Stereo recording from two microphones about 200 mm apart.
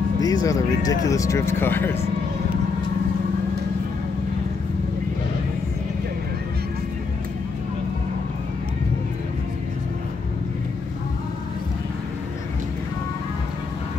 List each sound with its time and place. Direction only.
0.2 s speech: 15° left (ahead or behind)